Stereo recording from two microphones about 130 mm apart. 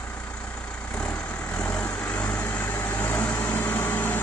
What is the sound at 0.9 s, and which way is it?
Vehicle, 10° left (ahead or behind).